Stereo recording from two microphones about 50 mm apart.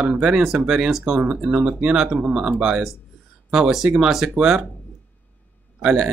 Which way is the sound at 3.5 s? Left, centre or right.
Centre.